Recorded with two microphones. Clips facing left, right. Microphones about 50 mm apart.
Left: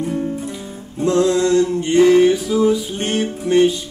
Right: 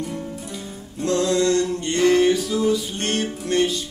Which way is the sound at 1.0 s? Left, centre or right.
Centre.